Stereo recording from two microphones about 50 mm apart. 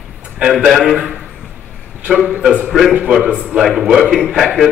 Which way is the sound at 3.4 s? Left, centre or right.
Centre.